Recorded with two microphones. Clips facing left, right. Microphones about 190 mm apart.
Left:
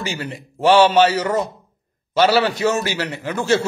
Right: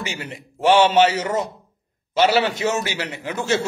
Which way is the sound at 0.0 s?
20° right (ahead or behind).